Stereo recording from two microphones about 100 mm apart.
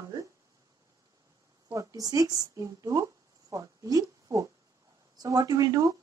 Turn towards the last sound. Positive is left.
turn(degrees=-35)  # may be behind; listen again after turning